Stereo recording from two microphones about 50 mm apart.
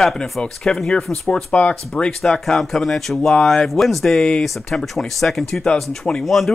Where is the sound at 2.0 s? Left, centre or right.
Centre.